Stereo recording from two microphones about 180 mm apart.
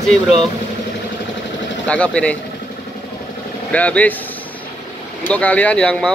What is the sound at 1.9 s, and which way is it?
Speech, 5° left (ahead or behind).